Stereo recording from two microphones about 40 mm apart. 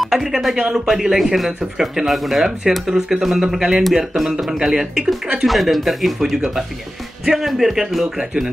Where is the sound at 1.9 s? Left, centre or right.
Centre.